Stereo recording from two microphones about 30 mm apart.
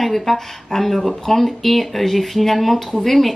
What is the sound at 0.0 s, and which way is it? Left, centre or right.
Speech, centre.